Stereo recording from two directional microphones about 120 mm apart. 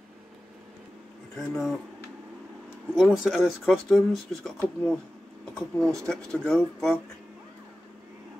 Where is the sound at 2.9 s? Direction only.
5° right (ahead or behind).